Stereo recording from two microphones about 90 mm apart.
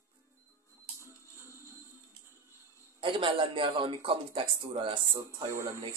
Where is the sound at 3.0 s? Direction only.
70° right (ahead or behind).